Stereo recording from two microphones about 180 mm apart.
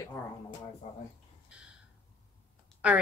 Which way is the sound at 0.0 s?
20° left (ahead or behind).